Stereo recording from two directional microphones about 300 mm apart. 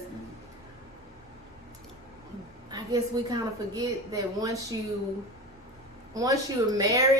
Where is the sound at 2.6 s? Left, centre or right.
Centre.